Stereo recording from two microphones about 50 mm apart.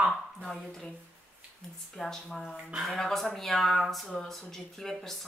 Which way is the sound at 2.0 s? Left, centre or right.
Centre.